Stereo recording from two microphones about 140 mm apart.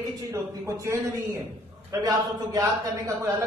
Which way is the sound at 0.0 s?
25° right (ahead or behind).